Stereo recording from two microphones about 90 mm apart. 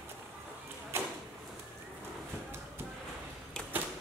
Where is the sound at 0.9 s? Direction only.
30° right (ahead or behind).